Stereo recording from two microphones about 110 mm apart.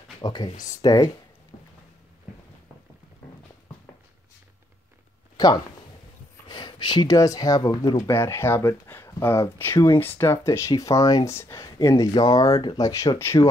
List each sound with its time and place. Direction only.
0.2 s speech: 35° left (ahead or behind)
5.4 s speech: 30° left (ahead or behind)
6.5 s speech: 45° left (ahead or behind)
8.1 s speech: 25° left (ahead or behind)